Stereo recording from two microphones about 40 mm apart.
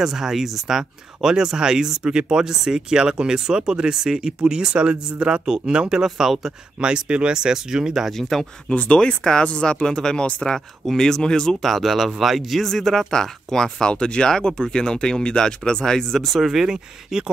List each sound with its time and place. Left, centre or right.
0.0 s speech: centre
6.0 s speech: centre
6.8 s speech: right
8.2 s speech: centre
8.6 s speech: left
11.6 s speech: centre
12.6 s speech: centre
16.3 s speech: centre